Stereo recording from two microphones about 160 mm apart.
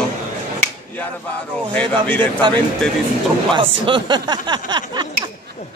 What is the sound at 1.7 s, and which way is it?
Speech, 10° left (ahead or behind).